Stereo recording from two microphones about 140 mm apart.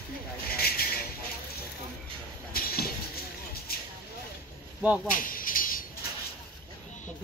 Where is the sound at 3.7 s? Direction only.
90° left.